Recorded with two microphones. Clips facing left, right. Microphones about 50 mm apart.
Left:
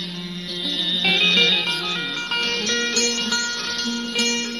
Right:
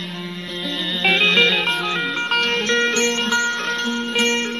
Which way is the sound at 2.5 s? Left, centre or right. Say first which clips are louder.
Right 5 dB; right.